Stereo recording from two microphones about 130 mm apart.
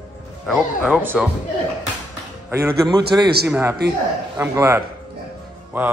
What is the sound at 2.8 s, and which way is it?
A man's voice, 30° right (ahead or behind).